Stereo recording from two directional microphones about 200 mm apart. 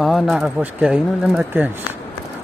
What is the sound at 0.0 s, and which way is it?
Speech, centre (ahead or behind).